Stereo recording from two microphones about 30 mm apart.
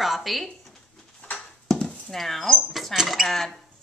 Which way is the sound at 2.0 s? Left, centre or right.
Centre.